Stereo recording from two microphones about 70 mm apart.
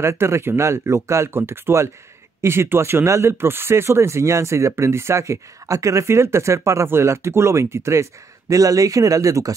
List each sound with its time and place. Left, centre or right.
0.0 s speech: right